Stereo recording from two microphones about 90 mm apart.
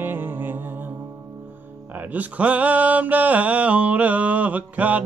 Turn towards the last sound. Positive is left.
turn(degrees=-15)  # may be behind; listen again after turning